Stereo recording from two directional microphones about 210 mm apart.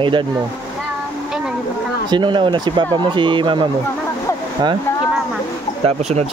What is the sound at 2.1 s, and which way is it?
Speech, 20° right (ahead or behind).